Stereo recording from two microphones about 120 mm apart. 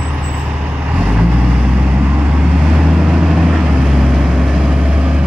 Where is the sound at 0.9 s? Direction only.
10° right (ahead or behind).